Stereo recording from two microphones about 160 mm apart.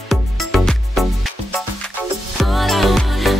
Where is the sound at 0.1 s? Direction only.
Centre (ahead or behind).